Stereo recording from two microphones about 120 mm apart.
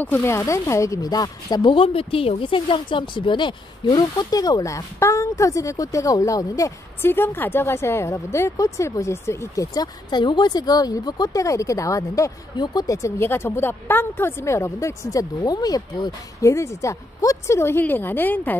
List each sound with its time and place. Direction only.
0.0 s speech: 20° left (ahead or behind)